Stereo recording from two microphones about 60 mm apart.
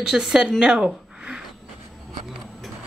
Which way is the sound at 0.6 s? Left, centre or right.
Centre.